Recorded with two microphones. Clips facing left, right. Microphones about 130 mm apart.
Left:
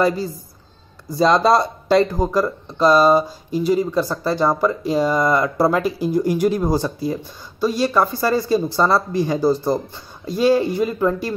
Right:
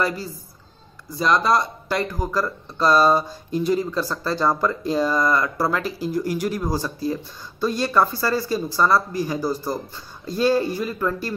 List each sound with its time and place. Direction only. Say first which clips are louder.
1.1 s speech: left 5 dB; 30° left (ahead or behind)
10.2 s speech: left 3 dB; 15° left (ahead or behind)